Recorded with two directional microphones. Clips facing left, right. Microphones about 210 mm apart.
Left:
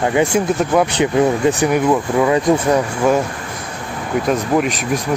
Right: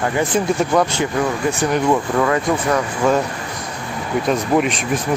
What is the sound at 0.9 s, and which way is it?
Speech, 20° left (ahead or behind).